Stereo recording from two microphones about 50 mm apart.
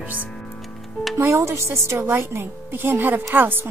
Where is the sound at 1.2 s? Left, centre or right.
Right.